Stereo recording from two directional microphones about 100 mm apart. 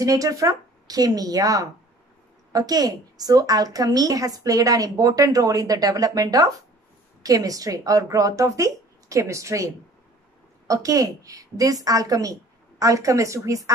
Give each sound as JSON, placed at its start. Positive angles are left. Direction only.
{"t": 0.0, "sound": "a woman's voice", "side_deg": -35}
{"t": 10.7, "sound": "a woman's voice", "side_deg": -35}